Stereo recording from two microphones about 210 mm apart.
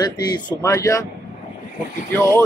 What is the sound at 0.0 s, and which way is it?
A man's voice, 20° left (ahead or behind).